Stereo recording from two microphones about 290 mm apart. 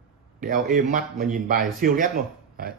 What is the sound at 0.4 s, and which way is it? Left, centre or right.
Speech, right.